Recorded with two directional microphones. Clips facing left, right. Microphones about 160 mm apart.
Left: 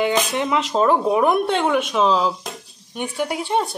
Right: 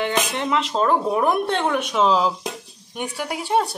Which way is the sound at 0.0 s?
5° left (ahead or behind).